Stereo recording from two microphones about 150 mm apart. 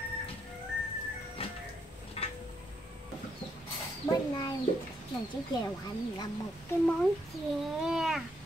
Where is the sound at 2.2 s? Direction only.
40° left (ahead or behind).